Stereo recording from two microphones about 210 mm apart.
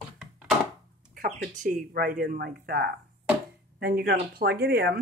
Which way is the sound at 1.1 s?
40° right (ahead or behind).